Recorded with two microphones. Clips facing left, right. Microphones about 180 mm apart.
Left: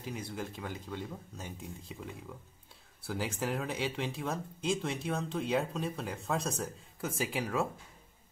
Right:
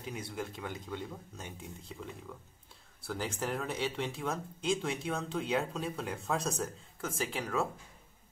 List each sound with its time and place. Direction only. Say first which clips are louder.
0.0 s speech: even; centre (ahead or behind)
3.1 s speech: left 1 dB; 5° left (ahead or behind)
7.0 s speech: left 2 dB; 15° left (ahead or behind)